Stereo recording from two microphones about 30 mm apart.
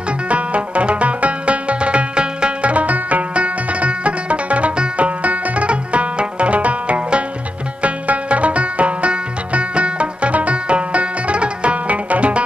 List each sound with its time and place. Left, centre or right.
0.3 s music: right
2.7 s music: right